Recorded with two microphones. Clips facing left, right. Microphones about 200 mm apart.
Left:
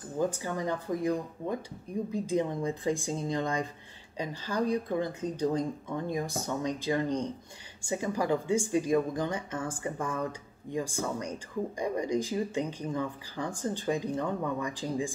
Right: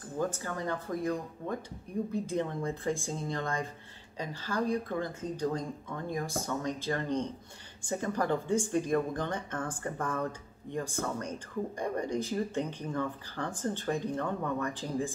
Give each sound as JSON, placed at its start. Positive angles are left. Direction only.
{"t": 0.2, "sound": "speech", "side_deg": 15}